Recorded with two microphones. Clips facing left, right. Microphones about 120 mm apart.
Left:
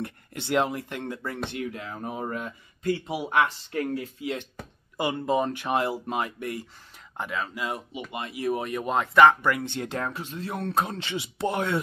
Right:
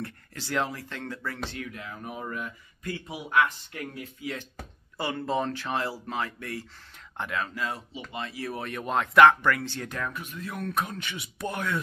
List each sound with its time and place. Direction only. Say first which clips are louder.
0.0 s speech: left 3 dB; 20° left (ahead or behind)
7.2 s speech: even; 5° left (ahead or behind)
7.5 s speech: left 2 dB; 15° left (ahead or behind)
9.7 s speech: left 4 dB; 25° left (ahead or behind)